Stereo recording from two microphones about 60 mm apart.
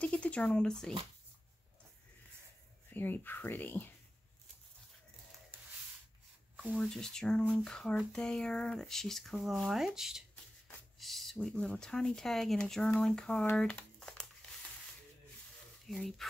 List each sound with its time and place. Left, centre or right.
0.0 s speech: centre
2.9 s speech: left
6.8 s speech: centre
11.0 s a sound: centre
11.4 s speech: centre
13.9 s crumpling: centre
15.9 s speech: centre